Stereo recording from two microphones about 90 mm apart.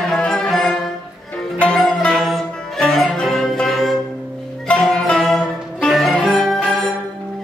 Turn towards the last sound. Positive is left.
turn(degrees=5)  # may be behind; listen again after turning